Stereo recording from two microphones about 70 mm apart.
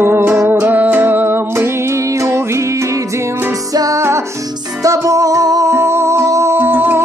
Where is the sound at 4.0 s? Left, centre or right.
Right.